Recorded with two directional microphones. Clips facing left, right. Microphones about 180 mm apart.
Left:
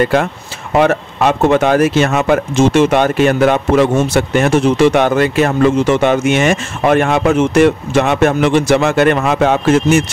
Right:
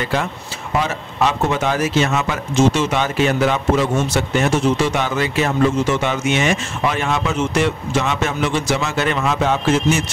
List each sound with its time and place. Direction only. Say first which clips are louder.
0.0 s speech: left 8 dB; 55° left (ahead or behind)